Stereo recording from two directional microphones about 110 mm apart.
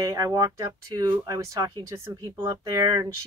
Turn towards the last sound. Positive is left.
turn(degrees=-35)  # may be behind; listen again after turning